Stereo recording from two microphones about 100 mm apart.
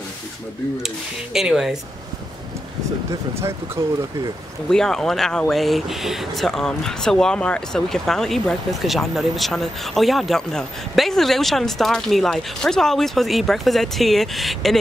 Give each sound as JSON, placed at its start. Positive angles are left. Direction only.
{"t": 0.8, "sound": "speech", "side_deg": -5}
{"t": 3.1, "sound": "speech", "side_deg": -25}
{"t": 4.6, "sound": "speech", "side_deg": 5}